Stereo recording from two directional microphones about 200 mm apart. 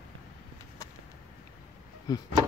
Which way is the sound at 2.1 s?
20° left (ahead or behind).